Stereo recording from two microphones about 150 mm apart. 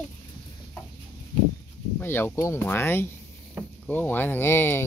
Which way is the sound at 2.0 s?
15° left (ahead or behind).